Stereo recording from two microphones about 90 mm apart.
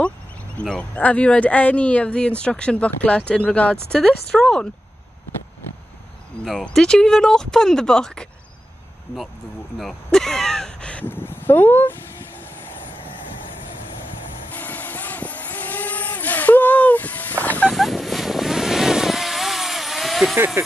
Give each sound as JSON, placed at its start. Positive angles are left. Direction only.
{"t": 0.6, "sound": "speech", "side_deg": 15}
{"t": 6.6, "sound": "speech", "side_deg": 5}
{"t": 9.8, "sound": "speech", "side_deg": 5}
{"t": 14.5, "sound": "vehicle", "side_deg": 20}
{"t": 17.6, "sound": "vehicle", "side_deg": 0}
{"t": 20.3, "sound": "speech", "side_deg": -25}